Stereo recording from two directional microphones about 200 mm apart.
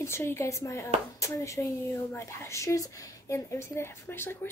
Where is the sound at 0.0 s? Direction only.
15° left (ahead or behind).